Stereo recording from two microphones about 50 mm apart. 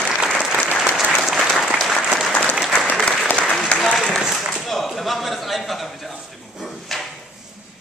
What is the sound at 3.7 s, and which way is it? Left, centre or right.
Applause, centre.